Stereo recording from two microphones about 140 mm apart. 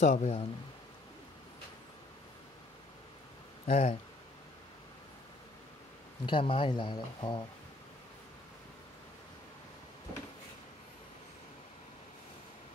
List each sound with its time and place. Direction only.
0.0 s speech: 55° left (ahead or behind)
3.6 s speech: 60° left (ahead or behind)
6.2 s speech: 35° left (ahead or behind)